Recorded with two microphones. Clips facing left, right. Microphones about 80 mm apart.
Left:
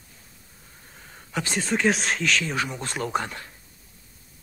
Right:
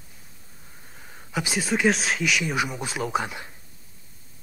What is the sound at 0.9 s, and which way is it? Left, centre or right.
Speech, centre.